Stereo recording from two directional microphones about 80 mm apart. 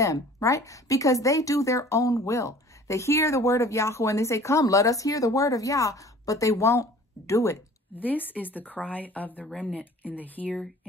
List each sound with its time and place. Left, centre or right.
0.0 s speech: left
7.9 s speech: left